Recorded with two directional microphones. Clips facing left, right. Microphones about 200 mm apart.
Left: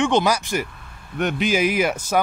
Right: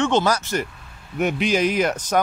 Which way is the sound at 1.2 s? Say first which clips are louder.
Even; centre (ahead or behind).